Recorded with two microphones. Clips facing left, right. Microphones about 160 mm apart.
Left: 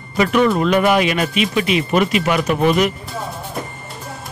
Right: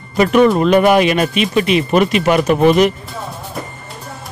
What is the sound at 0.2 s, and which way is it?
Speech, 40° right (ahead or behind).